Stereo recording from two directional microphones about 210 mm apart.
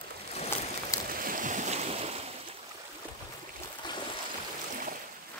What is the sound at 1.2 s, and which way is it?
Boat, 40° right (ahead or behind).